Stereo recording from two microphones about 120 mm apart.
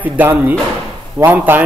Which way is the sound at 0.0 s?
15° right (ahead or behind).